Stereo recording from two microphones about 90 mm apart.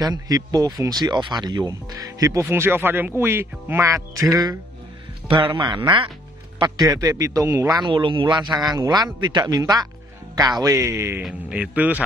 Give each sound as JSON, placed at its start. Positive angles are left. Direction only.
{"t": 0.0, "sound": "speech", "side_deg": -45}
{"t": 5.3, "sound": "speech", "side_deg": -70}
{"t": 6.9, "sound": "speech", "side_deg": -40}
{"t": 7.9, "sound": "speech", "side_deg": -65}
{"t": 8.7, "sound": "speech", "side_deg": -50}
{"t": 11.2, "sound": "speech", "side_deg": -10}